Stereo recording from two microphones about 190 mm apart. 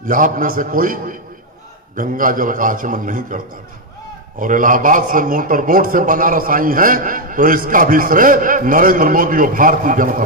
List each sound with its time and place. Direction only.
0.0 s a man's voice: 45° right (ahead or behind)